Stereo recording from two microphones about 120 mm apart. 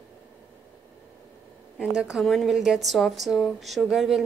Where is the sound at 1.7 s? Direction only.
5° right (ahead or behind).